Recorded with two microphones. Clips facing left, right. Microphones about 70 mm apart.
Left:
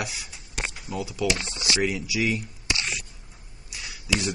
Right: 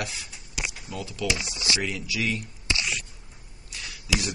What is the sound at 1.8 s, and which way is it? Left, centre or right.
Speech, centre.